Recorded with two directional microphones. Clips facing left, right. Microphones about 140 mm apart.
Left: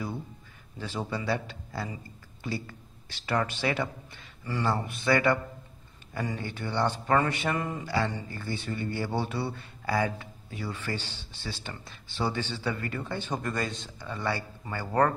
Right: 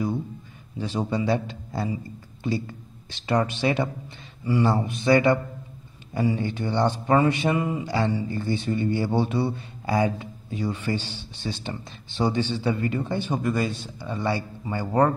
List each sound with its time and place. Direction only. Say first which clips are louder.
0.7 s a man's voice: right 7 dB; 20° right (ahead or behind)